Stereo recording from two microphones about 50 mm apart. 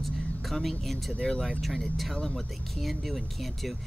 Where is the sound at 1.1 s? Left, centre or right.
Left.